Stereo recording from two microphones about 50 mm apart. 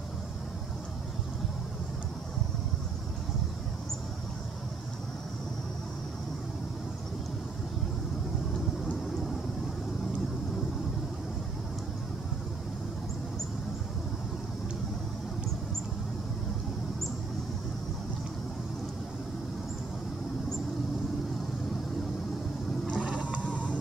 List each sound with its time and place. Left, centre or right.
22.9 s vehicle: centre